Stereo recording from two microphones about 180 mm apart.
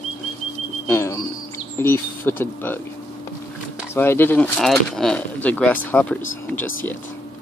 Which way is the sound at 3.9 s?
10° left (ahead or behind).